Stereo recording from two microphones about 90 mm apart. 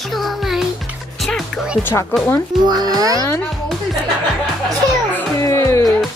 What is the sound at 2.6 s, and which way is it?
Speech, 45° right (ahead or behind).